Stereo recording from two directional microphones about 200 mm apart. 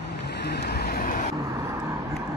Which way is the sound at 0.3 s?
55° left (ahead or behind).